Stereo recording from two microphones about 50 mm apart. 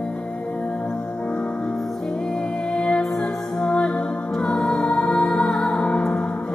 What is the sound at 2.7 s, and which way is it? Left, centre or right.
Music, centre.